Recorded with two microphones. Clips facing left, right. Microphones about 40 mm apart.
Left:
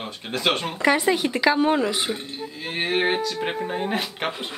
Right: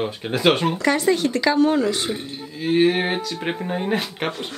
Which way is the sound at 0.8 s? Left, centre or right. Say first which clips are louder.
Right 1 dB; centre.